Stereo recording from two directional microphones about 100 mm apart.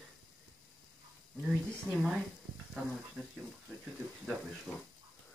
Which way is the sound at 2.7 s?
Centre (ahead or behind).